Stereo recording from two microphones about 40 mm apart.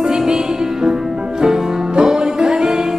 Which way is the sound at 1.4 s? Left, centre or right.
Centre.